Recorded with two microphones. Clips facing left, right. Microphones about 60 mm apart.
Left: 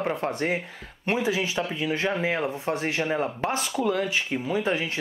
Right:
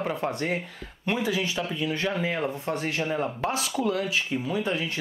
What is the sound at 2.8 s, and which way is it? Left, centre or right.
Speech, left.